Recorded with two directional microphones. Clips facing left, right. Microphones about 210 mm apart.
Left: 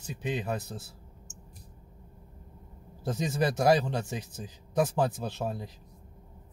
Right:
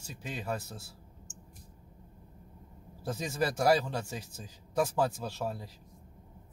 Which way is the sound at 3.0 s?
20° left (ahead or behind).